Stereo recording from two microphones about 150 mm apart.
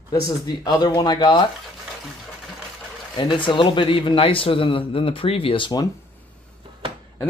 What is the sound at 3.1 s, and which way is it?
A man's voice, 30° left (ahead or behind).